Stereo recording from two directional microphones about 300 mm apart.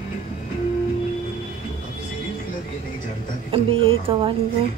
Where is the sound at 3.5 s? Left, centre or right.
Centre.